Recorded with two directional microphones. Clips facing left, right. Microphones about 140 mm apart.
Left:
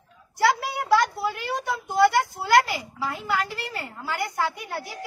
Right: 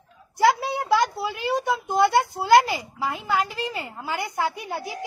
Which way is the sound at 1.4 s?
20° right (ahead or behind).